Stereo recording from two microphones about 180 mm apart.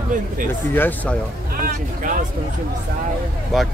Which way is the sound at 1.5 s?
50° right (ahead or behind).